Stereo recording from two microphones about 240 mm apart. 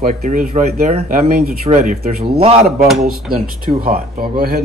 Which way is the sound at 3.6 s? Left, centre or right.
Right.